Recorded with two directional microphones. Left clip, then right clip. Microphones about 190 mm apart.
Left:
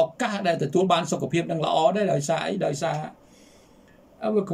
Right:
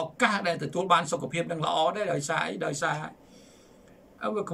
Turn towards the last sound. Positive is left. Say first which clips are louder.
# left 6 dB
turn(degrees=10)  # may be behind; listen again after turning